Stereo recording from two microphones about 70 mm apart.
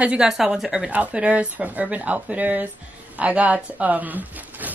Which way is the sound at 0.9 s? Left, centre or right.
Centre.